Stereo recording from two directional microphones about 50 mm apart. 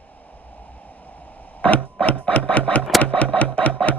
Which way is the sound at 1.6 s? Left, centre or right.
Left.